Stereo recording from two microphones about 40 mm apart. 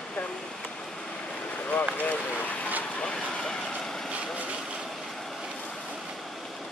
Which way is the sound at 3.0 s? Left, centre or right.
Centre.